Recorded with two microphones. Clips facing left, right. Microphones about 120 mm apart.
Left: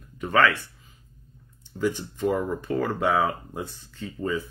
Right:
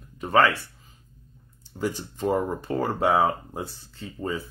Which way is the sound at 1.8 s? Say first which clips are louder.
Left 2 dB; 40° right (ahead or behind).